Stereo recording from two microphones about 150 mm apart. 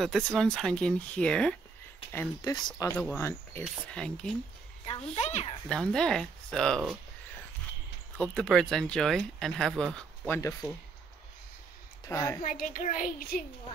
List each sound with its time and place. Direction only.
0.0 s speech: centre (ahead or behind)
2.1 s speech: 25° left (ahead or behind)
3.6 s speech: 5° left (ahead or behind)
4.8 s a child's voice: 45° left (ahead or behind)
5.7 s speech: 5° left (ahead or behind)
8.2 s speech: 5° left (ahead or behind)
12.1 s speech: 20° left (ahead or behind)
12.4 s a child's voice: 65° left (ahead or behind)